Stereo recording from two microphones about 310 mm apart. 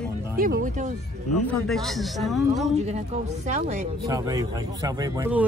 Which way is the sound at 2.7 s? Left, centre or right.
Right.